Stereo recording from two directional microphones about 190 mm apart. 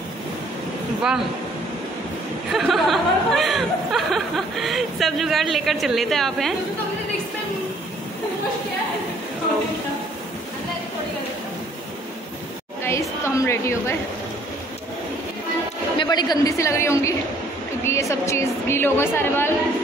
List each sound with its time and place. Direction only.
2.5 s speech: centre (ahead or behind)
12.8 s a woman's voice: 15° left (ahead or behind)
16.0 s a woman's voice: 20° left (ahead or behind)